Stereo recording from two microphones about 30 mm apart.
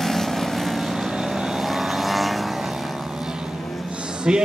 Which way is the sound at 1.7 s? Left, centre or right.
Centre.